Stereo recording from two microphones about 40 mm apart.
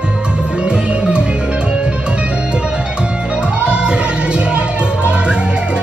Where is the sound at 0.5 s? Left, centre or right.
Right.